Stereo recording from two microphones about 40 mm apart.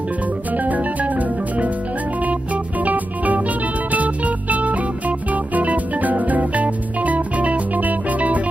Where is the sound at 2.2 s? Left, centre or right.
Right.